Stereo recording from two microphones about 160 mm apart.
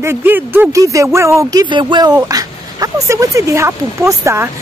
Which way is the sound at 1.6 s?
30° right (ahead or behind).